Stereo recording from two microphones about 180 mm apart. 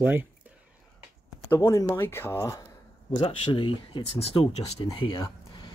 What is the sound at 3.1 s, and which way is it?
Speech, 30° left (ahead or behind).